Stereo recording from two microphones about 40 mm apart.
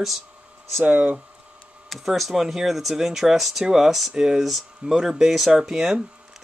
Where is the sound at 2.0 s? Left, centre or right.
Centre.